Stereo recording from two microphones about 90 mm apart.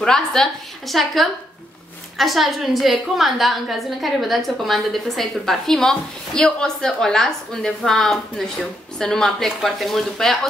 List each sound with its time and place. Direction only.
0.0 s a woman's voice: 5° left (ahead or behind)